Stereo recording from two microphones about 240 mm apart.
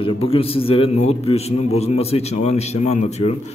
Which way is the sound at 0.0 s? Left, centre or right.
Left.